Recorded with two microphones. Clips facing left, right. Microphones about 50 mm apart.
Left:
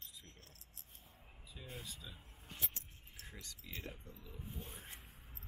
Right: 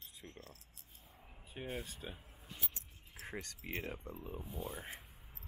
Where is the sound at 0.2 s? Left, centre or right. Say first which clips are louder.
Right 8 dB; right.